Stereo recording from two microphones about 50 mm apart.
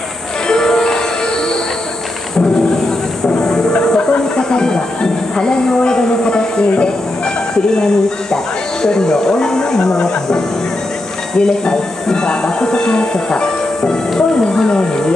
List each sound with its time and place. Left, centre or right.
0.5 s music: centre
3.4 s speech: centre